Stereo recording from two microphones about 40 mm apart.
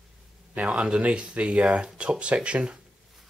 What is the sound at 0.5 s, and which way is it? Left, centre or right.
Speech, right.